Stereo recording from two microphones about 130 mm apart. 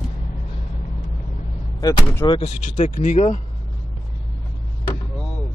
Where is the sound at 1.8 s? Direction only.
30° left (ahead or behind).